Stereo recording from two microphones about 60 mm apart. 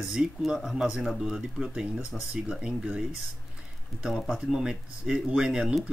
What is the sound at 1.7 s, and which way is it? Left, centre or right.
Speech, right.